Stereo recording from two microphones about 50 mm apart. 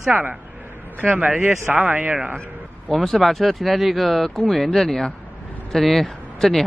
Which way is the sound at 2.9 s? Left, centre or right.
Centre.